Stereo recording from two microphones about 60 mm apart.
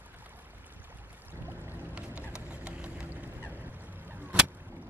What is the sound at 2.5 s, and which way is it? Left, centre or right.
Vehicle, right.